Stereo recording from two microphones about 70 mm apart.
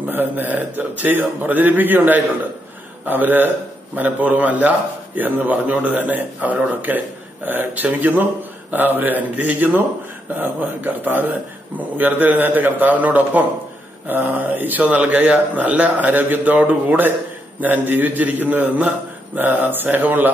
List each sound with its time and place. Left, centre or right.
0.1 s a man's voice: right